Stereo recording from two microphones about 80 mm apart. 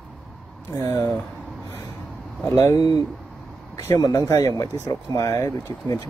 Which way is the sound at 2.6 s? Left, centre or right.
Left.